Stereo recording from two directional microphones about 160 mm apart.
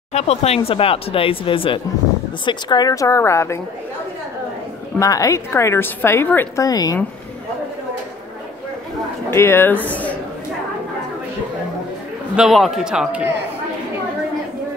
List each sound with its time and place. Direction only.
0.1 s a woman's voice: 40° left (ahead or behind); by 3.5 s 15° left (ahead or behind)
4.9 s a woman's voice: 20° left (ahead or behind)
9.3 s a woman's voice: 15° left (ahead or behind)
12.4 s a man's voice: centre (ahead or behind)